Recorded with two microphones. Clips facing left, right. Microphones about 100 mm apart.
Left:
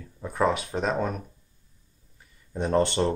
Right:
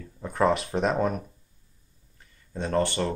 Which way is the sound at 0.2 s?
Centre (ahead or behind).